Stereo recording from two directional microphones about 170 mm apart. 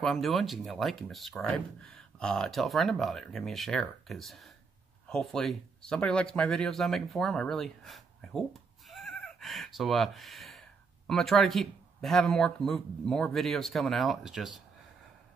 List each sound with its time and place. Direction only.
0.0 s speech: centre (ahead or behind)